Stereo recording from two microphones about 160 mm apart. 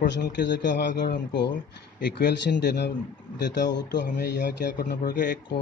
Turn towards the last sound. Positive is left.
turn(degrees=75)  # may be behind; listen again after turning